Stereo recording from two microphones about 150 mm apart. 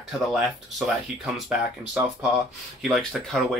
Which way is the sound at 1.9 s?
5° right (ahead or behind).